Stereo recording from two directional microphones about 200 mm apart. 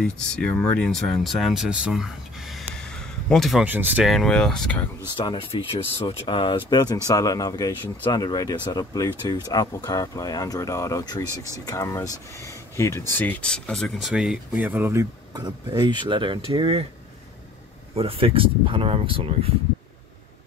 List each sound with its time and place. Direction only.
0.0 s speech: 5° left (ahead or behind)
5.1 s speech: 25° left (ahead or behind); by 16.8 s 25° right (ahead or behind)
17.9 s speech: 30° right (ahead or behind)